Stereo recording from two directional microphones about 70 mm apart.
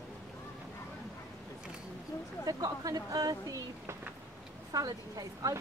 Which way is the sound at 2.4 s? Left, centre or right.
Right.